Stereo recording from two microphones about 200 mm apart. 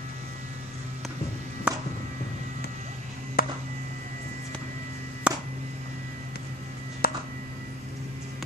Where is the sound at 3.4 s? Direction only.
45° left (ahead or behind).